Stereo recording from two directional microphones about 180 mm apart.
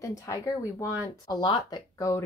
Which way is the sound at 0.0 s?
15° left (ahead or behind).